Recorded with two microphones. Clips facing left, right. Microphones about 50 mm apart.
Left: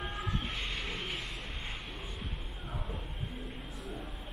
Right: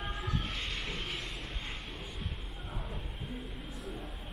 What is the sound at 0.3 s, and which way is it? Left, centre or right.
Vehicle, left.